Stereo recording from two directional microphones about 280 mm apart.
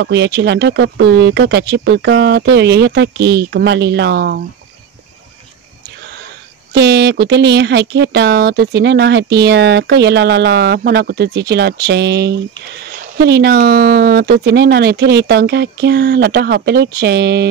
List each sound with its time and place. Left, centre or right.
0.0 s speech: right
6.7 s speech: right